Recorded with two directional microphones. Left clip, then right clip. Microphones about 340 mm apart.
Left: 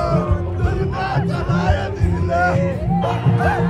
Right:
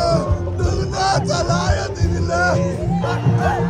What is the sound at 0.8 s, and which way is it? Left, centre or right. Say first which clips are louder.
Music: right 5 dB; centre.